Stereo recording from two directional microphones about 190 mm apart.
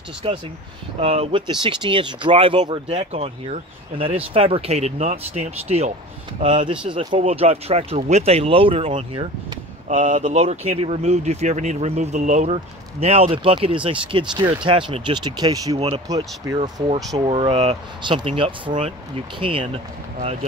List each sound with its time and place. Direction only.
0.2 s speech: 30° right (ahead or behind)